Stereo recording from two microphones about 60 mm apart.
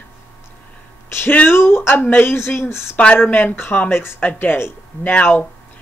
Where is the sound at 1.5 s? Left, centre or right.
Left.